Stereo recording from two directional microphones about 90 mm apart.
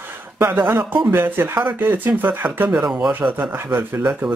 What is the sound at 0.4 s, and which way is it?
Speech, 25° right (ahead or behind).